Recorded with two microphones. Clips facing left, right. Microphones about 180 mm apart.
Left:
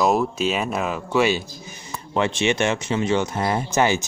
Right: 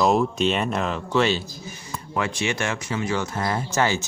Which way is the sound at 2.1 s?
25° left (ahead or behind).